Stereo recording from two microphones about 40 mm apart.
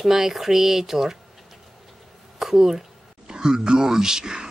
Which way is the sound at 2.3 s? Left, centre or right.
Centre.